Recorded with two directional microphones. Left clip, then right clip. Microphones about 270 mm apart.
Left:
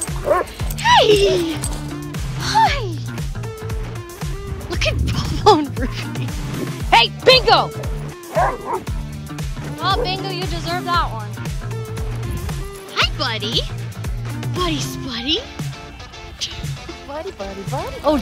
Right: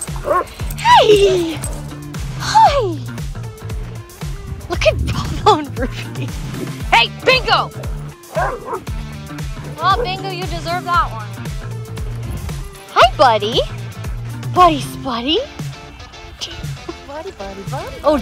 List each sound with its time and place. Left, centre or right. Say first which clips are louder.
0.3 s music: right 1 dB; right
0.7 s speech: right 3 dB; centre
2.1 s music: right 5 dB; centre
4.6 s music: right 7 dB; centre
5.8 s speech: right 2 dB; centre
6.9 s speech: left 1 dB; centre
8.4 s music: left 1 dB; left
9.3 s music: left 1 dB; centre
10.0 s speech: right 1 dB; centre
12.9 s speech: right 10 dB; centre
16.3 s music: left 1 dB; centre